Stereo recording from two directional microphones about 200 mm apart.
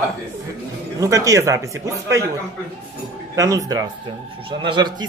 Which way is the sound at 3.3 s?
15° right (ahead or behind).